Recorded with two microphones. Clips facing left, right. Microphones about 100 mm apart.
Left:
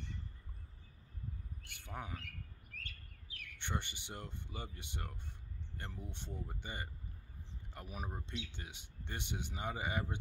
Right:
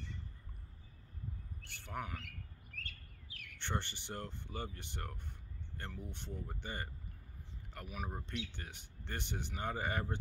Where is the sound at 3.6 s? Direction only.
15° left (ahead or behind).